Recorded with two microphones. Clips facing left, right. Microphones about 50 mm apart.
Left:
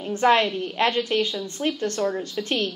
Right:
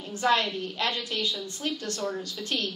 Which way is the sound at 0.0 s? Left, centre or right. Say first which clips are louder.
Left 6 dB; left.